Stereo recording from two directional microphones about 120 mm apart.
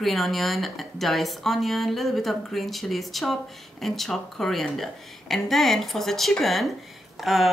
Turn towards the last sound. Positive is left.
turn(degrees=0)  # may be behind; listen again after turning